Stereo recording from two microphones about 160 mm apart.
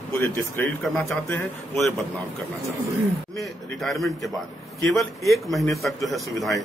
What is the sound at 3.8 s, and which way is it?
Speech, centre (ahead or behind).